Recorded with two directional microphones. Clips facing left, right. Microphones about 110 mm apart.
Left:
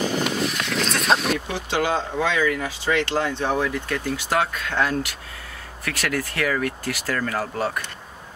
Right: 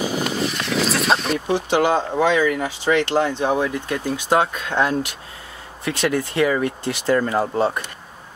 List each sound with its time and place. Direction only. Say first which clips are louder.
0.0 s vehicle: right 1 dB; centre (ahead or behind)
1.7 s speech: right 3 dB; 20° right (ahead or behind)